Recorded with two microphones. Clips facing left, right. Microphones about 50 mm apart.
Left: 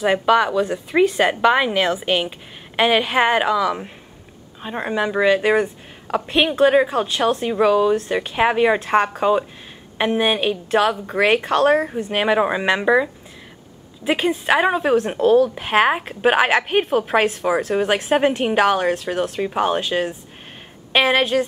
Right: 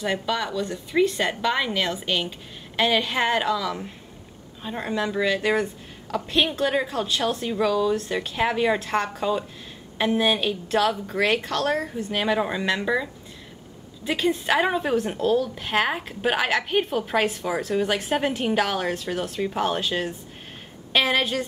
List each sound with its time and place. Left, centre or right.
0.3 s speech: left
7.1 s speech: centre
7.4 s speech: left
8.7 s speech: centre
9.2 s a woman's voice: left; by 21.5 s centre